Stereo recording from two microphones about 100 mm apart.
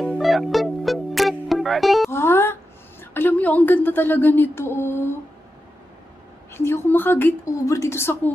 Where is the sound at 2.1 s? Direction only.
25° left (ahead or behind).